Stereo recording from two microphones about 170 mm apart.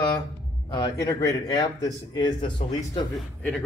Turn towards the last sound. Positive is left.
turn(degrees=5)  # may be behind; listen again after turning